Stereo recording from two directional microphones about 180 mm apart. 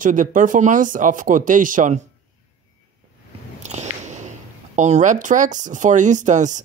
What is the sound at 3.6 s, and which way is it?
Speech, 40° right (ahead or behind).